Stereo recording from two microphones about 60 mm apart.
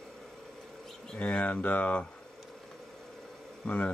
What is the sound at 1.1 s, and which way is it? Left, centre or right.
Speech, centre.